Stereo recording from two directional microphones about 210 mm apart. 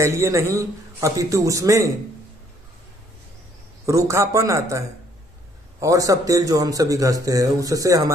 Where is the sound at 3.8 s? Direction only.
15° right (ahead or behind).